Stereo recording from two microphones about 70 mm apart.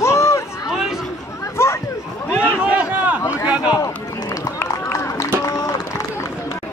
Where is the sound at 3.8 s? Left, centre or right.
Left.